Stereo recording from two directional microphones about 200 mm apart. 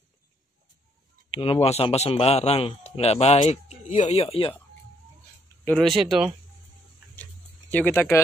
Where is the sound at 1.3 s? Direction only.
30° left (ahead or behind).